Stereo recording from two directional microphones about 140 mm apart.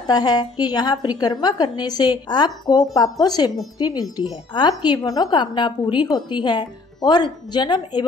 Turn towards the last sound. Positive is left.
turn(degrees=30)  # may be behind; listen again after turning